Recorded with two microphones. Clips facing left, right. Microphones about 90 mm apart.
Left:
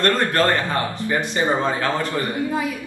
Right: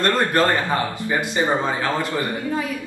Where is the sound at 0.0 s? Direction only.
15° right (ahead or behind).